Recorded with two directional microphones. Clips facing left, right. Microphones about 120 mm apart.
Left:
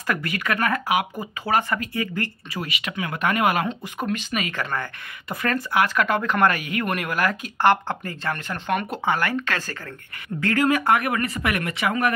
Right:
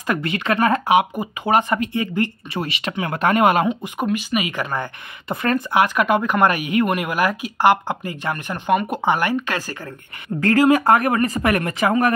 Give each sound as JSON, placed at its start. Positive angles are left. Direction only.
{"t": 0.0, "sound": "speech", "side_deg": -25}
{"t": 2.6, "sound": "speech", "side_deg": -30}
{"t": 3.6, "sound": "speech", "side_deg": -10}
{"t": 10.4, "sound": "speech", "side_deg": -35}